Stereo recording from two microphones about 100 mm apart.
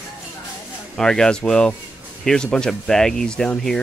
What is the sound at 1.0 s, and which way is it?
Speech, 5° left (ahead or behind).